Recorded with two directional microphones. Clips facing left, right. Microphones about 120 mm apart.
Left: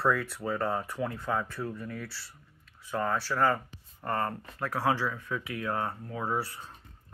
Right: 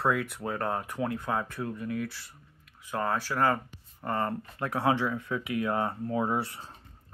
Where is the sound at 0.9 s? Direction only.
15° right (ahead or behind).